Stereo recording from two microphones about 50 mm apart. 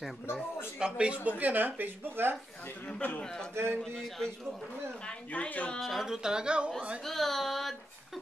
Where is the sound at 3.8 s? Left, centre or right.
Centre.